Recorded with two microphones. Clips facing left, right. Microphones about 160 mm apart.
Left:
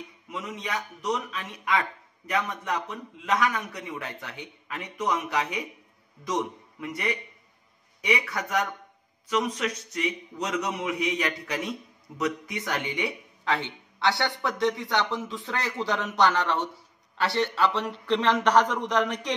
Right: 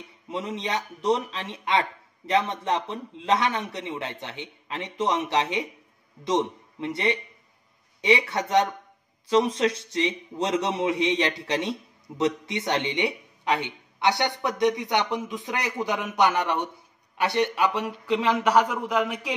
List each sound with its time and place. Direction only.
0.3 s a man's voice: 30° right (ahead or behind); by 19.3 s 5° right (ahead or behind)